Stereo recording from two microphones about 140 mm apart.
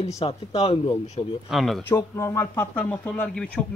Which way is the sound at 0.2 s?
45° left (ahead or behind).